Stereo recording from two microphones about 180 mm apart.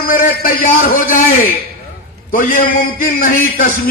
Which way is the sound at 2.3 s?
50° left (ahead or behind).